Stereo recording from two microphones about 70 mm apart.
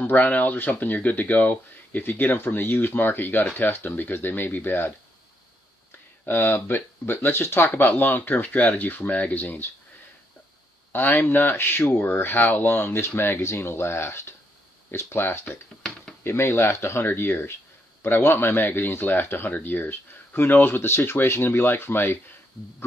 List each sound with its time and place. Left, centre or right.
0.0 s speech: left
6.2 s speech: left
7.6 s speech: left
10.9 s speech: left